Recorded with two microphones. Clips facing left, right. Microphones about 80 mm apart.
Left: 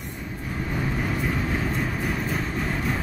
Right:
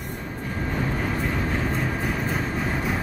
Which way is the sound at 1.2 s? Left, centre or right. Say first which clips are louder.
Even; centre.